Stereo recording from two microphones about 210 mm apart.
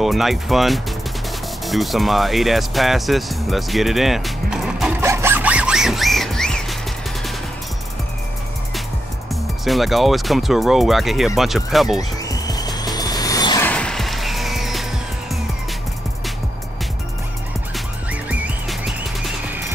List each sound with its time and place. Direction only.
0.0 s speech: centre (ahead or behind)
1.7 s music: centre (ahead or behind)
9.3 s speech: centre (ahead or behind)
12.0 s music: 15° left (ahead or behind)
13.7 s music: 5° left (ahead or behind)
18.3 s music: 5° right (ahead or behind)